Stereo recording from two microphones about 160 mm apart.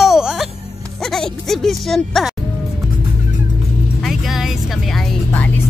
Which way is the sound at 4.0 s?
Centre (ahead or behind).